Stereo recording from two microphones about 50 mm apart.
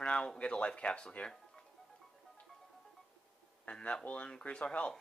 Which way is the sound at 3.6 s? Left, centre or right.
Left.